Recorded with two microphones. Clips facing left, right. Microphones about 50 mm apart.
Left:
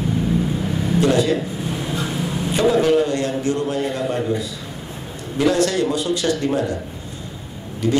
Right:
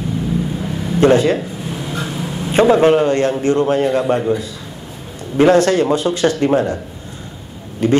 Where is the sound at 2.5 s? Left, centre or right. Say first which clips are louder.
Right 5 dB; right.